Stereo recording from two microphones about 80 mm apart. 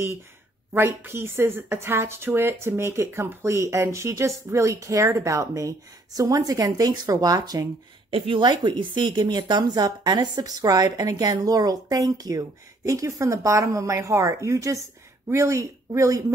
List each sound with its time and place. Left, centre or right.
0.7 s speech: right
8.3 s speech: right